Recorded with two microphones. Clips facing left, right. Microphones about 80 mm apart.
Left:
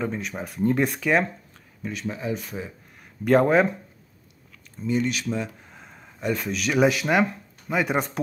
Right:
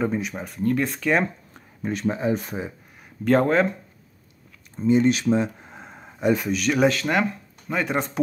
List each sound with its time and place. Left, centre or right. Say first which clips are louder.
0.0 s speech: right 4 dB; centre
1.8 s speech: right 6 dB; right
3.3 s speech: left 1 dB; centre
4.8 s speech: right 7 dB; right
6.3 s speech: left 2 dB; centre